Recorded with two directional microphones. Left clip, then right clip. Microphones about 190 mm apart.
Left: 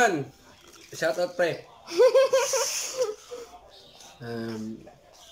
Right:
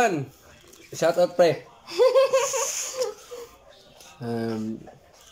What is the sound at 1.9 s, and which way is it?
Laughter, 15° left (ahead or behind).